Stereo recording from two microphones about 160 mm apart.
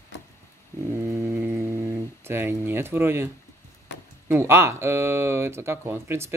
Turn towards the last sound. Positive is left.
turn(degrees=-15)  # may be behind; listen again after turning